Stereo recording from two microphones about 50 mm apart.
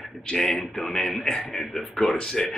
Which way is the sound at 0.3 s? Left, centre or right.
Centre.